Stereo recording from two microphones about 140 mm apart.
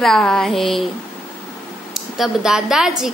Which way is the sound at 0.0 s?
5° left (ahead or behind).